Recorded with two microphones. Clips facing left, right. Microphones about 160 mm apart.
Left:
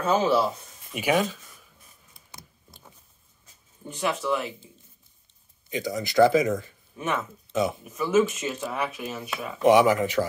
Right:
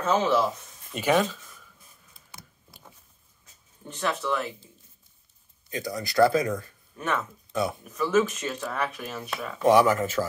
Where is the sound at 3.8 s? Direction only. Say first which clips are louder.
Left 2 dB; 10° left (ahead or behind).